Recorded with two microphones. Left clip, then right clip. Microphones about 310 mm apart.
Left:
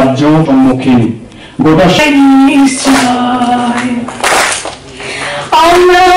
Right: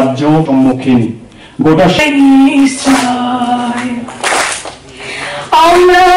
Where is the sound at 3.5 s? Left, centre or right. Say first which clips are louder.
Left 3 dB; centre.